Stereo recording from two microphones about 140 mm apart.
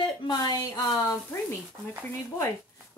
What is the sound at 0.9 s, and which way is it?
Speech, 20° left (ahead or behind).